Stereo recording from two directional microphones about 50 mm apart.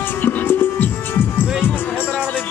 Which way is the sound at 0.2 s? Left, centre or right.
Left.